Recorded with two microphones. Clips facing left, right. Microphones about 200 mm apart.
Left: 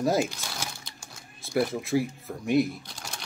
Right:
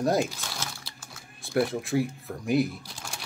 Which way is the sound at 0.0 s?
Centre (ahead or behind).